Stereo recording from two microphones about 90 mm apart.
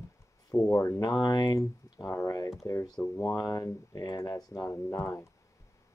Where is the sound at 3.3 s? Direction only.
45° left (ahead or behind).